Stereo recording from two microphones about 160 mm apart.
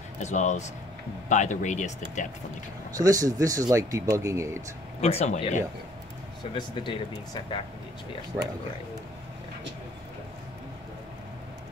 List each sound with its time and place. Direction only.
0.2 s speech: 45° left (ahead or behind)
3.0 s speech: 20° right (ahead or behind)
5.0 s speech: 45° left (ahead or behind)
6.5 s speech: 30° left (ahead or behind)